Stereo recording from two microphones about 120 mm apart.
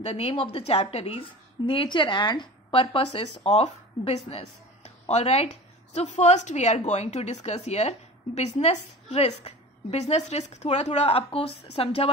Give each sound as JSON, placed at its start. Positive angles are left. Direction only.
{"t": 0.0, "sound": "a woman's voice", "side_deg": 60}
{"t": 1.7, "sound": "a woman's voice", "side_deg": 40}
{"t": 2.7, "sound": "a woman's voice", "side_deg": 55}
{"t": 5.9, "sound": "a woman's voice", "side_deg": 70}